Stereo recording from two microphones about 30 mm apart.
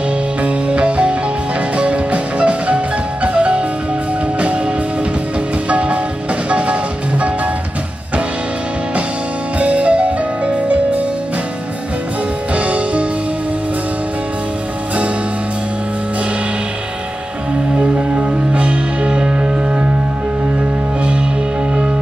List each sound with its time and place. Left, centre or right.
0.4 s music: right
5.7 s music: right
9.6 s music: right
12.5 s music: right
17.7 s music: right